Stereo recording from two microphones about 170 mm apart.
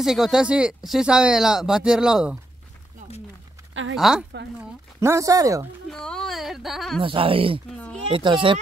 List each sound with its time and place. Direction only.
0.0 s speech: centre (ahead or behind)
3.9 s speech: 5° right (ahead or behind)
5.0 s speech: 20° right (ahead or behind)
5.9 s speech: 5° left (ahead or behind)
7.0 s speech: 30° right (ahead or behind)
7.7 s speech: 5° left (ahead or behind)
8.1 s speech: 30° right (ahead or behind)